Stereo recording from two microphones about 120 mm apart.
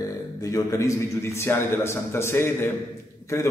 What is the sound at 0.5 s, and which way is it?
A man's voice, 30° left (ahead or behind).